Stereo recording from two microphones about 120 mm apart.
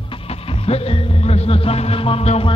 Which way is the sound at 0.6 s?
55° left (ahead or behind).